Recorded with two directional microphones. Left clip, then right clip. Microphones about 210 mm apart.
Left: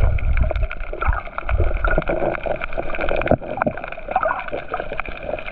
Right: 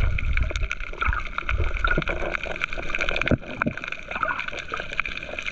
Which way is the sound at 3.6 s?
15° left (ahead or behind).